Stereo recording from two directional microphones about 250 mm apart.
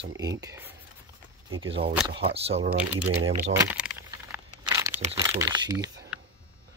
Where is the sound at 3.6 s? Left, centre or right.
Centre.